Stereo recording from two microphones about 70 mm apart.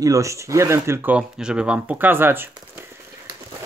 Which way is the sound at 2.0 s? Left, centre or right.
Right.